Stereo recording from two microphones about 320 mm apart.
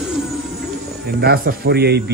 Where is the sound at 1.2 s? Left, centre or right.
Right.